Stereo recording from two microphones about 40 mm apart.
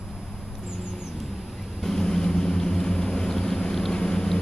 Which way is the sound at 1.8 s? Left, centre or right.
Centre.